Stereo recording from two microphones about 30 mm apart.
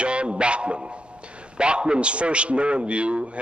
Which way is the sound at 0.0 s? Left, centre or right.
Right.